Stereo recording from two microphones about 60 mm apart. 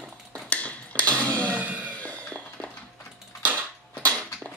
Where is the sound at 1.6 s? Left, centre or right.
Right.